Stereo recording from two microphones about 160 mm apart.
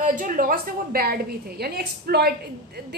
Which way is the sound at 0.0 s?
55° right (ahead or behind).